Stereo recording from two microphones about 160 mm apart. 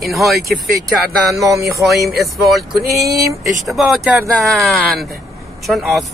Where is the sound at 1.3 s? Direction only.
20° right (ahead or behind).